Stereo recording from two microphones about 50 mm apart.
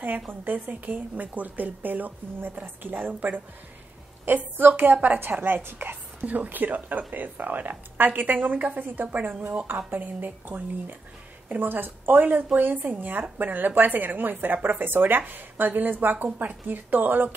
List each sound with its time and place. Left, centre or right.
0.0 s a woman's voice: right
6.2 s a woman's voice: right